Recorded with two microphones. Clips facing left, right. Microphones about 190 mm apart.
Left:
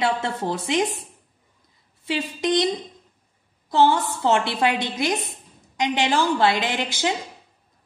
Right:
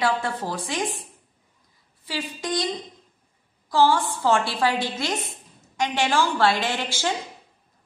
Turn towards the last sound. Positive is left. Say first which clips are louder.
# left 2 dB
turn(degrees=20)  # may be behind; listen again after turning